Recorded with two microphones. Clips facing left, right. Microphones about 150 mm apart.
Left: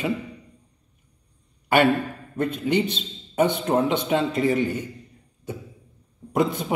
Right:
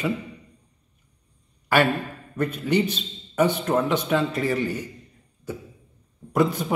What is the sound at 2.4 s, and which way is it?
A man's voice, 25° left (ahead or behind).